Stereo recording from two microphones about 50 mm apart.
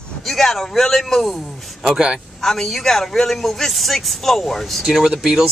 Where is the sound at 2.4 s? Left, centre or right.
Centre.